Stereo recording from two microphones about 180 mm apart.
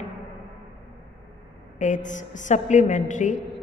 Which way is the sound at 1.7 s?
45° left (ahead or behind).